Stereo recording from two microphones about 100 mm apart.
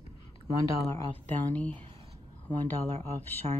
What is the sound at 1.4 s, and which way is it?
Speech, 15° left (ahead or behind).